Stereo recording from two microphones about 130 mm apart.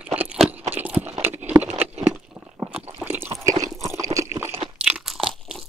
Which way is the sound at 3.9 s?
25° right (ahead or behind).